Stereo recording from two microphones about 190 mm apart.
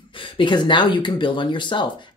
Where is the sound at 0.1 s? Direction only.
25° left (ahead or behind).